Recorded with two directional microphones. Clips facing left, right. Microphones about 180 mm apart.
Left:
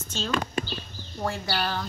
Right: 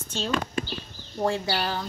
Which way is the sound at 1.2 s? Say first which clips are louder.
Right 3 dB; 25° right (ahead or behind).